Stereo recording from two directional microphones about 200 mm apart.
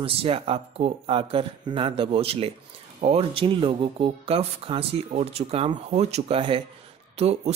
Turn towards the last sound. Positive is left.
turn(degrees=-30)  # may be behind; listen again after turning